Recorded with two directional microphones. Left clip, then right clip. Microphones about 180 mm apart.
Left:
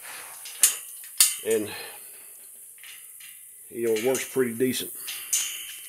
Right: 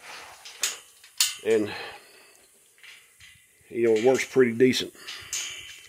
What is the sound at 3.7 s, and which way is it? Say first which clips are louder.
Speech: right 4 dB; 55° right (ahead or behind).